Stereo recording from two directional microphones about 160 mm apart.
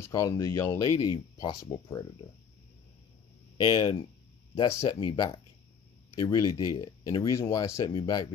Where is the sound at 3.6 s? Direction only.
30° left (ahead or behind).